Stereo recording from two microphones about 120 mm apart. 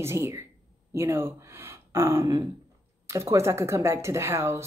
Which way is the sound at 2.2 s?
35° right (ahead or behind).